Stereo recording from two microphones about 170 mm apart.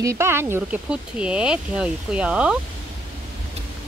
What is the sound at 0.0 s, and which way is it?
Speech, 15° right (ahead or behind).